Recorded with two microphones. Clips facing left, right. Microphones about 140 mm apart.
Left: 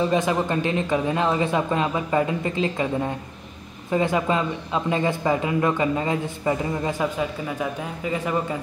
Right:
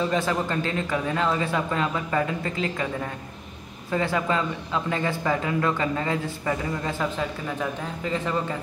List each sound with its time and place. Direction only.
0.0 s speech: 20° left (ahead or behind)